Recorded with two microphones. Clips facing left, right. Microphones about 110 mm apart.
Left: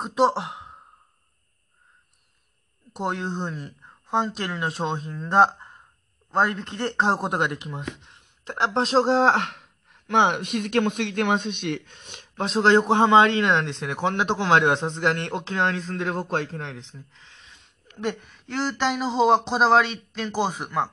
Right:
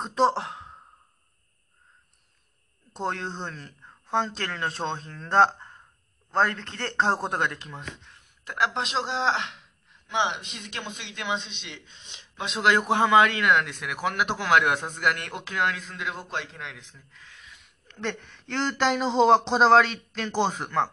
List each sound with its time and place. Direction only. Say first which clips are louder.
0.0 s speech: left 2 dB; 10° left (ahead or behind)
2.9 s a woman's voice: left 3 dB; 15° left (ahead or behind); by 16.8 s 40° left (ahead or behind)
16.8 s a sound: left 5 dB; 25° left (ahead or behind)
17.8 s speech: left 4 dB; 15° left (ahead or behind)